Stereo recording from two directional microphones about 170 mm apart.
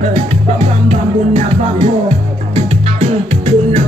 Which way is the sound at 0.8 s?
35° right (ahead or behind).